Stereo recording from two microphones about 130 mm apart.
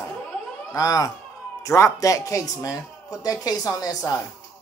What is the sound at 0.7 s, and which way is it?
Speech, 25° left (ahead or behind).